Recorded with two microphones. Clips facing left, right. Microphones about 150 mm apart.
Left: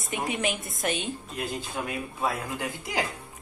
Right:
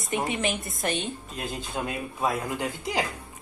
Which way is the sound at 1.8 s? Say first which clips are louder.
Right 2 dB; 25° right (ahead or behind).